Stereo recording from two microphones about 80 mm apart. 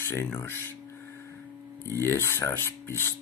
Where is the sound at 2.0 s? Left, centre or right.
Left.